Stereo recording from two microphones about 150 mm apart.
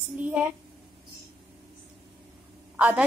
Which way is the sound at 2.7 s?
10° right (ahead or behind).